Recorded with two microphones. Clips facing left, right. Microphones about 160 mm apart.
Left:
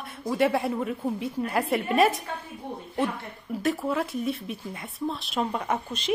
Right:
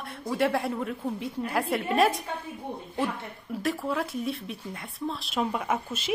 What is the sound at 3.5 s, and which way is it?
Speech, centre (ahead or behind).